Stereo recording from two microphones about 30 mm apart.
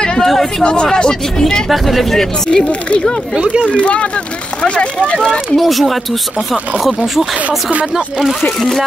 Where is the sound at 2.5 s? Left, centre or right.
Left.